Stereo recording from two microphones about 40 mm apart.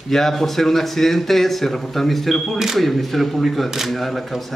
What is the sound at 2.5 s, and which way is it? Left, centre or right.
Speech, centre.